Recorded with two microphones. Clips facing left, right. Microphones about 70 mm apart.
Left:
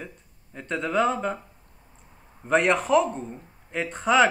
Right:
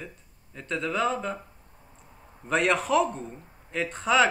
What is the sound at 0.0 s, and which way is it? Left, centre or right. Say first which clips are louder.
Speech: left 2 dB; left.